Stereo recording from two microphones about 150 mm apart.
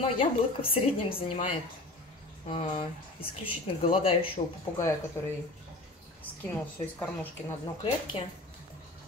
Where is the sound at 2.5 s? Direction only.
35° left (ahead or behind).